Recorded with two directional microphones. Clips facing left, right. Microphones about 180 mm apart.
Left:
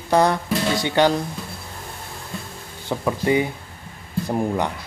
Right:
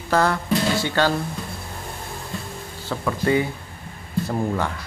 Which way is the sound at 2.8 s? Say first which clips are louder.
Left 1 dB; 15° left (ahead or behind).